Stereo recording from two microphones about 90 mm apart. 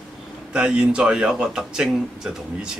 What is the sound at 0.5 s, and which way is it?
Speech, 10° right (ahead or behind).